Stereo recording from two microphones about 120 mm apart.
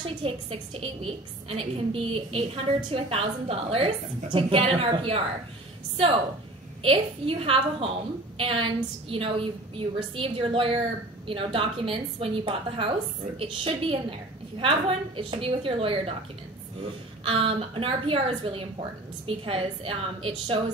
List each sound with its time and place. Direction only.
0.0 s a woman's voice: 50° right (ahead or behind)
6.8 s a woman's voice: 50° right (ahead or behind)
17.2 s a woman's voice: 50° right (ahead or behind)